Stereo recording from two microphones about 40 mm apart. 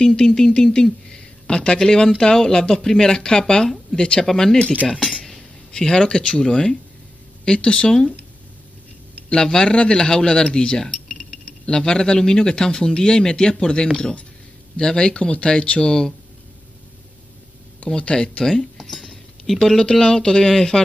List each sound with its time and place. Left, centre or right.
0.0 s a man's voice: left
4.3 s speech: centre
5.7 s a man's voice: centre
9.3 s a man's voice: left
15.8 s speech: centre
17.9 s a man's voice: left
18.4 s speech: centre
19.8 s speech: centre